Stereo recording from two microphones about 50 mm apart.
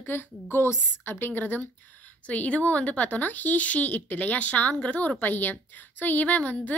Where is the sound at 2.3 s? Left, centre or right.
Left.